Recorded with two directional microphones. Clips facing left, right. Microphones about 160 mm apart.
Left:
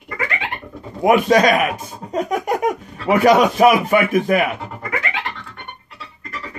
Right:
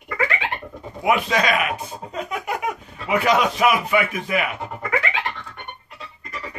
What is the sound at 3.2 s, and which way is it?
A man's voice, 45° left (ahead or behind).